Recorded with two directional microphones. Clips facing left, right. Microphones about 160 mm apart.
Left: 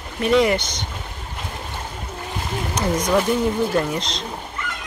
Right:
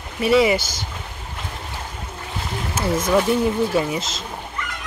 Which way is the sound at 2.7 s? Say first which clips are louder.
Right 1 dB; 5° right (ahead or behind).